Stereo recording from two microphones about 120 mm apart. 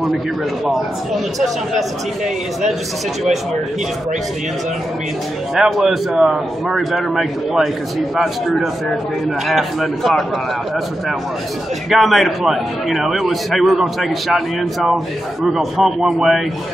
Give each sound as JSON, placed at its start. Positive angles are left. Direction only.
{"t": 1.4, "sound": "a man's voice", "side_deg": 0}
{"t": 5.5, "sound": "a man's voice", "side_deg": 0}
{"t": 11.9, "sound": "a man's voice", "side_deg": 0}